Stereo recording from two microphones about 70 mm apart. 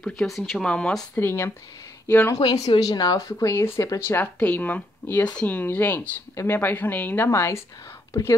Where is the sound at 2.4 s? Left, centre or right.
Left.